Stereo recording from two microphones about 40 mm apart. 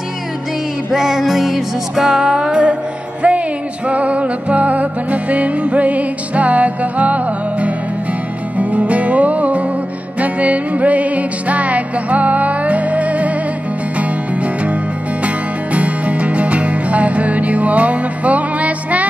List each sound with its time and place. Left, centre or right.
0.9 s music: centre
2.0 s music: centre
2.6 s music: right